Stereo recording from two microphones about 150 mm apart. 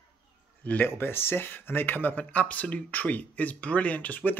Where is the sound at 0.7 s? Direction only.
10° left (ahead or behind).